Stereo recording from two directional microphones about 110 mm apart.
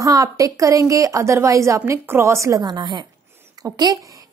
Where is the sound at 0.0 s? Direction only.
30° right (ahead or behind).